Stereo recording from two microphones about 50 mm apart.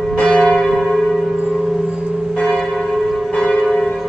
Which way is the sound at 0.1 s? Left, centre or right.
Centre.